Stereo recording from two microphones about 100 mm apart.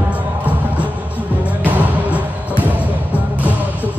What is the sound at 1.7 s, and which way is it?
Music, 15° right (ahead or behind).